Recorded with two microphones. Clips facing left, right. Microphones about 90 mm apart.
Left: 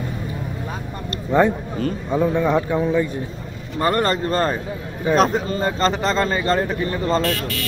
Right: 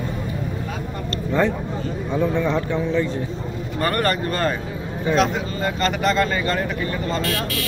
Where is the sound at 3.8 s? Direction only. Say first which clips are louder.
Left 2 dB; 20° left (ahead or behind).